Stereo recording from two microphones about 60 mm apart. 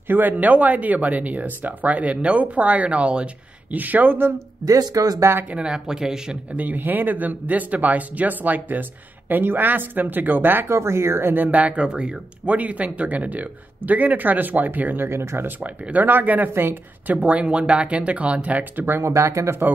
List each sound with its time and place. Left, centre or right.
0.1 s speech: right
4.6 s speech: right
5.4 s speech: right
5.7 s speech: centre
6.5 s speech: right
10.7 s speech: right
11.4 s speech: right
15.0 s speech: right
15.6 s speech: right
19.0 s speech: right